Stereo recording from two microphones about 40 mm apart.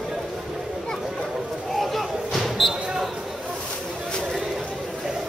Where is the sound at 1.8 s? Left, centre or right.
Centre.